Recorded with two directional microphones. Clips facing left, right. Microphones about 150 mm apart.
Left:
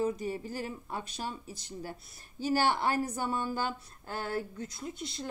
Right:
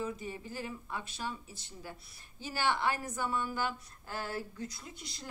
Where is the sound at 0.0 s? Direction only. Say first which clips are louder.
Left 7 dB; 40° left (ahead or behind).